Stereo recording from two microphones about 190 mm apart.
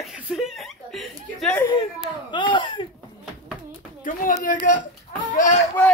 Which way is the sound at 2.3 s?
25° left (ahead or behind).